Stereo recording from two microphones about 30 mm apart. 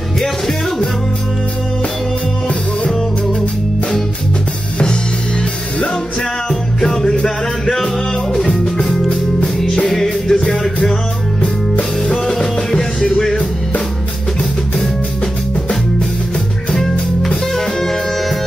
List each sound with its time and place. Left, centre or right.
6.8 s music: centre
9.9 s music: centre
12.3 s music: centre
17.6 s music: centre